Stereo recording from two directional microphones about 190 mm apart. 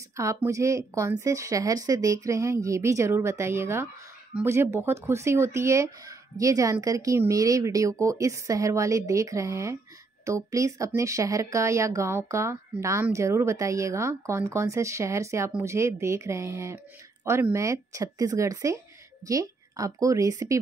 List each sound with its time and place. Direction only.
0.1 s speech: 15° right (ahead or behind)